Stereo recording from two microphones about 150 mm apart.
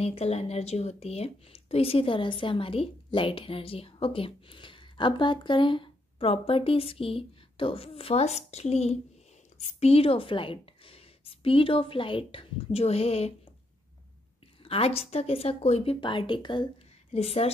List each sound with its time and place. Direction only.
0.0 s a woman's voice: 45° left (ahead or behind)
14.6 s speech: 40° left (ahead or behind)
17.1 s a woman's voice: 45° left (ahead or behind)